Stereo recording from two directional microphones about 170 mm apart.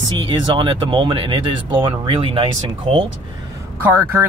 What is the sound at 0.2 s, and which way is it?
Speech, 30° right (ahead or behind).